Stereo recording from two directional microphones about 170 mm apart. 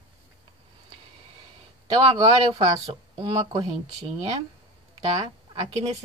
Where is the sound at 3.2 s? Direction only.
30° right (ahead or behind).